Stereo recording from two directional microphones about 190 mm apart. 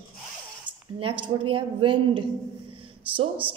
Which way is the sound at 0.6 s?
25° right (ahead or behind).